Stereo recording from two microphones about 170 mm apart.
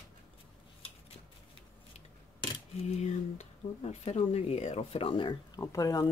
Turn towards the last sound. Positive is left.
turn(degrees=20)  # may be behind; listen again after turning